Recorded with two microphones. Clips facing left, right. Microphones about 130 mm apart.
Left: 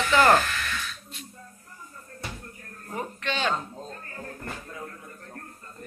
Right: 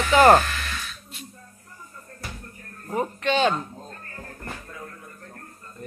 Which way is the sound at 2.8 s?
15° right (ahead or behind).